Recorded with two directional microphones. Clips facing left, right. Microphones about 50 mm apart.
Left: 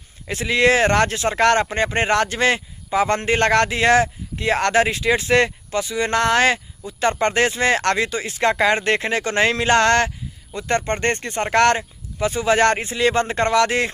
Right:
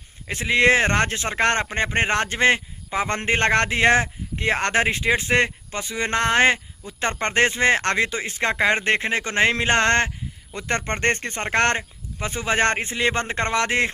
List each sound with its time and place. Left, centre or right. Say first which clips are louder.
0.3 s a man's voice: left 1 dB; right
10.5 s speech: left 4 dB; right
11.4 s speech: left 5 dB; right